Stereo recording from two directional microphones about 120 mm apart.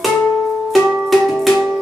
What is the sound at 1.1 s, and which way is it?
Music, centre (ahead or behind).